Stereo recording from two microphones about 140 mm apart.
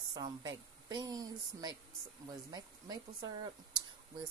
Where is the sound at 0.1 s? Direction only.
30° right (ahead or behind).